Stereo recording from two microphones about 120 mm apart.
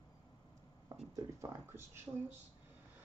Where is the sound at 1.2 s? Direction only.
25° right (ahead or behind).